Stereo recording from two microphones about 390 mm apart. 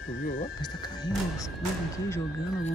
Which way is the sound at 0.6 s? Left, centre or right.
Centre.